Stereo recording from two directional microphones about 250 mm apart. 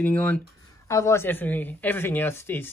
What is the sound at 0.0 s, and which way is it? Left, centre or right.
Speech, centre.